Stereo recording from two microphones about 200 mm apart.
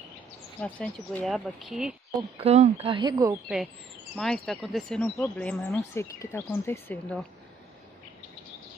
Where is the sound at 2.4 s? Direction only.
30° right (ahead or behind).